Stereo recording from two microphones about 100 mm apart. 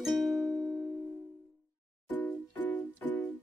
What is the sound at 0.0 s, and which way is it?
Music, centre (ahead or behind).